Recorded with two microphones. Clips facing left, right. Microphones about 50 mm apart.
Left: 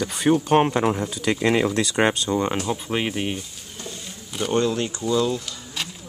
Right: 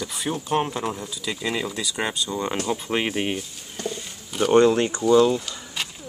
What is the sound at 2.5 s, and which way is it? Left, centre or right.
Speech, centre.